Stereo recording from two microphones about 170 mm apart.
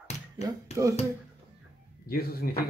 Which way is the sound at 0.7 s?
20° right (ahead or behind).